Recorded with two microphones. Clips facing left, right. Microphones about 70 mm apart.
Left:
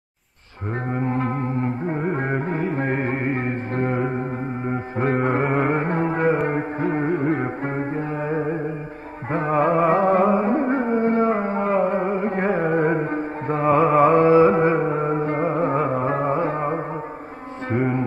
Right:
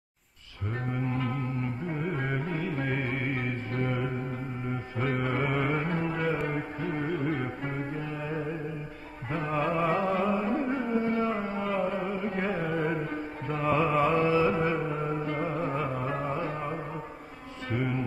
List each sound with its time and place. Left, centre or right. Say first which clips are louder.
0.9 s music: left 8 dB; left